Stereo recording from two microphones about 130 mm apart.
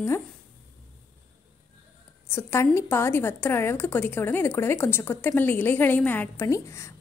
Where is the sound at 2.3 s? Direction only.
20° left (ahead or behind).